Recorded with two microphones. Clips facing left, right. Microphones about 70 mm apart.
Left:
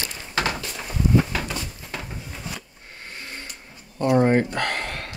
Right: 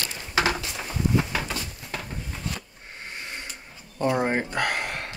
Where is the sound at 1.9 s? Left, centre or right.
Centre.